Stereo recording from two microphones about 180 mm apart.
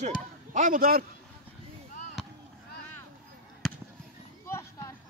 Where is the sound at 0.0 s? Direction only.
45° right (ahead or behind).